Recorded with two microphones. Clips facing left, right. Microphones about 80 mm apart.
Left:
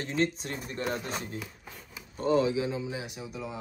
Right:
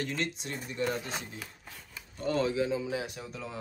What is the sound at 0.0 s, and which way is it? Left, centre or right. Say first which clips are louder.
Speech: left 5 dB; left.